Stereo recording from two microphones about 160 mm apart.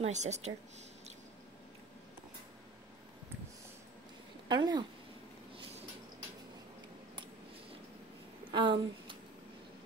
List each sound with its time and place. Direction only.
0.0 s speech: 45° right (ahead or behind)
4.5 s speech: 25° right (ahead or behind)
8.5 s speech: 30° right (ahead or behind)